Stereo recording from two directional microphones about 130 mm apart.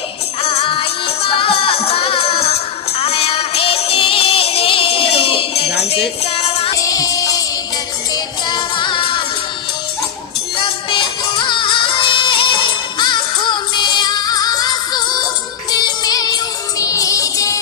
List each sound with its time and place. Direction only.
0.4 s music: 50° left (ahead or behind)
6.7 s music: 25° left (ahead or behind)
10.6 s music: 40° left (ahead or behind)